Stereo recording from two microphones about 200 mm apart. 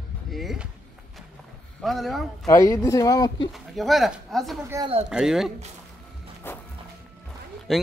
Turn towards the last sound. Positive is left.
turn(degrees=0)  # may be behind; listen again after turning